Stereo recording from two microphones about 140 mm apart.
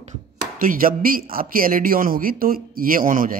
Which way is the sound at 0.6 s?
90° right.